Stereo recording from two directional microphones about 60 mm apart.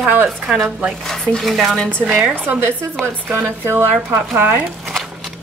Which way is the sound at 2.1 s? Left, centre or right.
Centre.